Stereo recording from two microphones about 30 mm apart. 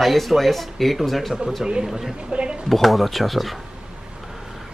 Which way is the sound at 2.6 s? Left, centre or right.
Centre.